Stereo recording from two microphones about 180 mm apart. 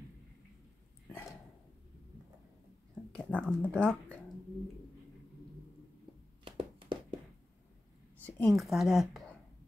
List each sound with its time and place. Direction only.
3.1 s speech: 5° left (ahead or behind)
6.4 s a sound: 25° right (ahead or behind)
8.2 s a woman's voice: 10° left (ahead or behind)